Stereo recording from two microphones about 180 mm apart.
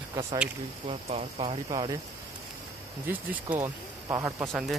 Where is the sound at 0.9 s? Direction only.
35° right (ahead or behind).